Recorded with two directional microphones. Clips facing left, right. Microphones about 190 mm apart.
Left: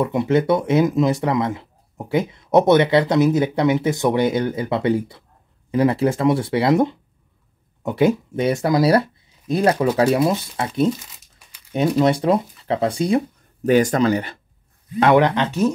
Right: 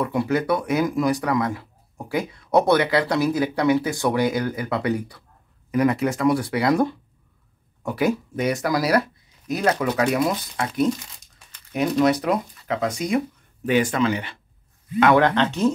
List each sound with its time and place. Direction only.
0.0 s speech: 25° left (ahead or behind)
9.7 s speech: 10° left (ahead or behind)
9.9 s speech: 30° left (ahead or behind)
12.0 s speech: 25° left (ahead or behind)
13.7 s speech: 45° left (ahead or behind)
15.1 s speech: 15° left (ahead or behind)